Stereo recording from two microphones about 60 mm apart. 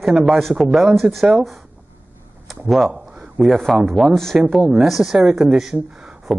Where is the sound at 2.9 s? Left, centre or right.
Centre.